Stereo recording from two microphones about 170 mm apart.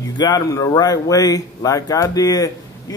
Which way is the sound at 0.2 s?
20° left (ahead or behind).